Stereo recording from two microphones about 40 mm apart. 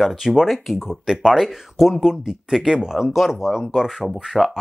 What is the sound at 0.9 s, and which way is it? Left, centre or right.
Speech, centre.